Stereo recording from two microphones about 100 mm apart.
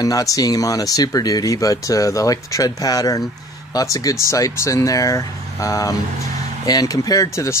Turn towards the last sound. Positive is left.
turn(degrees=30)  # may be behind; listen again after turning